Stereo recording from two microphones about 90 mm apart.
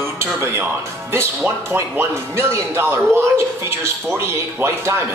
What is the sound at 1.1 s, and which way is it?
Speech, 30° right (ahead or behind).